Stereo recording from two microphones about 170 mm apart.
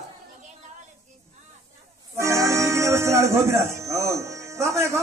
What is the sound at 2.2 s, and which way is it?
Music, 15° right (ahead or behind).